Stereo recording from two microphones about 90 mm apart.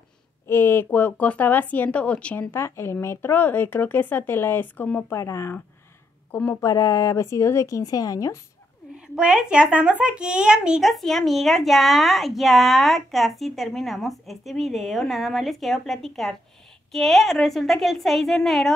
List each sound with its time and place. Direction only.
0.5 s speech: 25° left (ahead or behind)
2.5 s speech: 30° left (ahead or behind)
5.1 s a woman's voice: 35° left (ahead or behind)
6.3 s speech: 20° left (ahead or behind)
6.6 s a woman's voice: 35° left (ahead or behind)
8.9 s speech: 10° right (ahead or behind)